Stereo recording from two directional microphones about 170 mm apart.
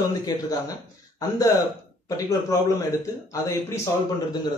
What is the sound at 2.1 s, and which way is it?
A man's voice, 20° left (ahead or behind).